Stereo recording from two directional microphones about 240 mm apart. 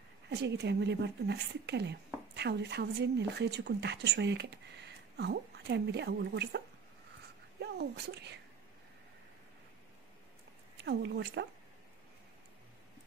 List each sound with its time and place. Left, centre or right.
0.3 s a woman's voice: right
7.6 s a woman's voice: right
10.8 s a woman's voice: right